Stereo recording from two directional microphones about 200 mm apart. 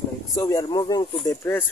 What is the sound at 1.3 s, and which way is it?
Speech, 10° left (ahead or behind).